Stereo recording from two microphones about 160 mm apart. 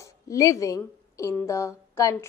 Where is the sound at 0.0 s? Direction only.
20° left (ahead or behind).